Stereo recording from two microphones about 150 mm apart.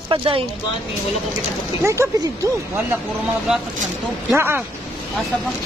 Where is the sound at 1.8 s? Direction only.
20° right (ahead or behind).